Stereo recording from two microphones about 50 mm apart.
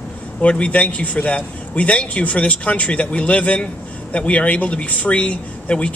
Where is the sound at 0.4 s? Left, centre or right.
Left.